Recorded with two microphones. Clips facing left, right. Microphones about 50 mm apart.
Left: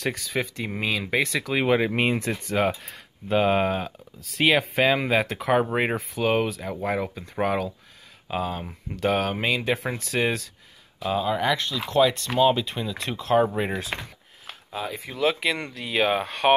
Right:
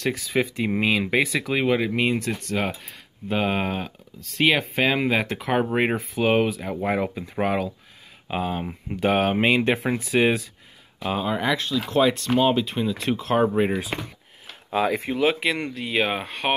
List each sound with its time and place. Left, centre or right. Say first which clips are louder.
0.0 s speech: right 4 dB; centre
1.5 s speech: left 1 dB; centre
1.8 s speech: even; centre
2.8 s speech: right 1 dB; centre
8.3 s speech: right 2 dB; centre
11.4 s speech: right 1 dB; centre
14.7 s speech: right 9 dB; right
15.1 s speech: left 2 dB; centre